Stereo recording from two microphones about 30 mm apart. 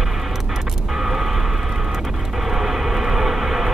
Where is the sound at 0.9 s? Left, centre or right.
Centre.